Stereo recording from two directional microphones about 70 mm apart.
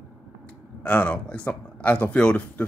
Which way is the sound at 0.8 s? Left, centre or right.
Left.